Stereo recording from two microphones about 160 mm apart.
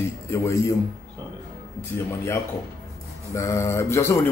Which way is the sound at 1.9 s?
15° left (ahead or behind).